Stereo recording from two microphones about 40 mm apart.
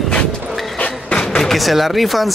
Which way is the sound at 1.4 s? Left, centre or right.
Centre.